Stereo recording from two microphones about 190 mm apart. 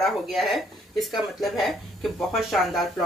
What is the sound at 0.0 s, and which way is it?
Speech, centre (ahead or behind).